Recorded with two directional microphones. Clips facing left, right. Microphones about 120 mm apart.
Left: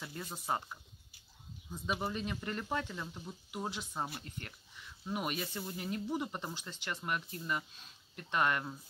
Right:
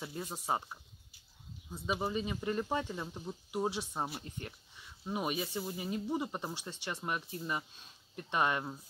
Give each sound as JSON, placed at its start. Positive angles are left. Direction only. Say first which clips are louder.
{"t": 0.0, "sound": "speech", "louder": "right 3 dB", "side_deg": -15}
{"t": 1.7, "sound": "speech", "louder": "right 2 dB", "side_deg": -5}
{"t": 5.2, "sound": "speech", "louder": "right 5 dB", "side_deg": -10}